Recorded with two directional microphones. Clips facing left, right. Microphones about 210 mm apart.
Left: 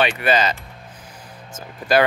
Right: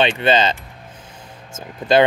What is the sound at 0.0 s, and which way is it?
Speech, 25° right (ahead or behind).